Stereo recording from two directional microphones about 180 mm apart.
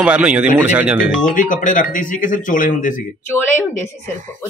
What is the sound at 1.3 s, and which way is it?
Speech, 45° left (ahead or behind).